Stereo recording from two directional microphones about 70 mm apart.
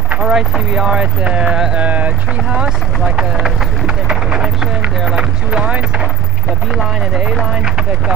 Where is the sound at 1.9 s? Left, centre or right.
Right.